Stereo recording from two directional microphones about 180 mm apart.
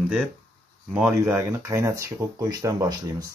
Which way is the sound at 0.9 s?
10° right (ahead or behind).